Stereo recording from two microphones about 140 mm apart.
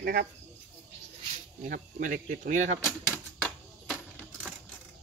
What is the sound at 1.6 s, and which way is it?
Speech, 85° right.